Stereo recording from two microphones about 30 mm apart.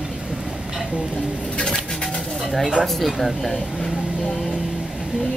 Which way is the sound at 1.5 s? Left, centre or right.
Left.